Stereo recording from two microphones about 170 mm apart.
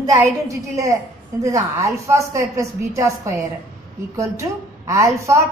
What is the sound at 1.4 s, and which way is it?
A woman's voice, 20° right (ahead or behind).